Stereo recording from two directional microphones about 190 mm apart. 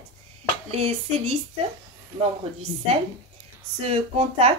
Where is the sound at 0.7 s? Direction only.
30° right (ahead or behind).